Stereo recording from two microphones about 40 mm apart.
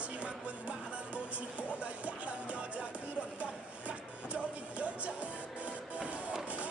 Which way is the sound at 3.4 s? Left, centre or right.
Right.